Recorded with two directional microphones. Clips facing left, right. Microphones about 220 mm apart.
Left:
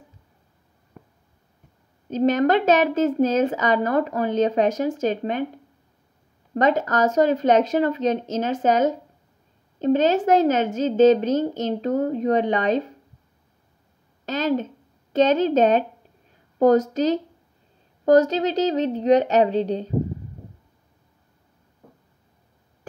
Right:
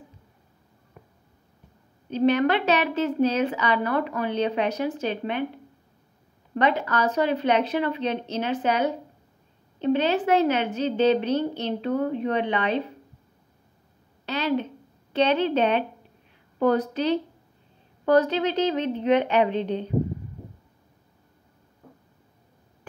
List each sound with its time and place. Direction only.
2.0 s a woman's voice: 45° left (ahead or behind)
6.5 s a woman's voice: 45° left (ahead or behind)
14.2 s a woman's voice: 45° left (ahead or behind)